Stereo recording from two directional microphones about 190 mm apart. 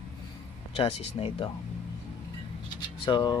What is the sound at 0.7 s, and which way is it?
Speech, 30° left (ahead or behind).